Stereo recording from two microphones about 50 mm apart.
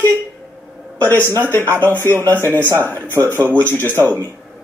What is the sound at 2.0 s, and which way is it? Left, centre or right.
Speech, left.